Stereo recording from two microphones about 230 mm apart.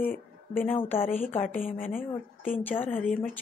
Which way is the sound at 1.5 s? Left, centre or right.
Left.